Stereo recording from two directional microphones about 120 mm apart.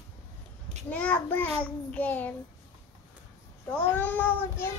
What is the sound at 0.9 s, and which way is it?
Child singing, 10° left (ahead or behind).